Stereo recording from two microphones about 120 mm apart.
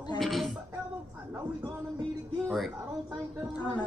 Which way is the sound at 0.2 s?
Centre (ahead or behind).